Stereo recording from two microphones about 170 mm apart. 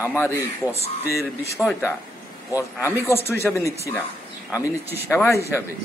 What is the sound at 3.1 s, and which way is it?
Speech, 15° left (ahead or behind).